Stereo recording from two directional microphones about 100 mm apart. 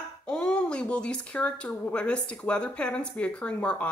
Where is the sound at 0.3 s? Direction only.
10° left (ahead or behind).